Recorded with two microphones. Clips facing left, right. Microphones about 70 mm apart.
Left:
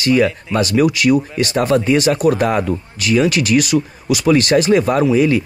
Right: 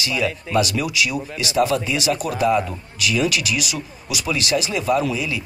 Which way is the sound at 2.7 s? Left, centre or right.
Left.